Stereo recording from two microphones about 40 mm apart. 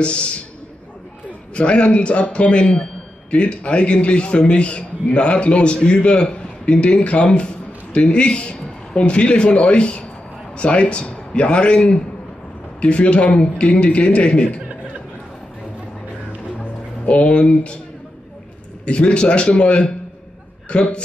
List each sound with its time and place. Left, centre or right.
0.0 s a man's voice: left
1.5 s a man's voice: left
16.5 s music: left
18.9 s a man's voice: left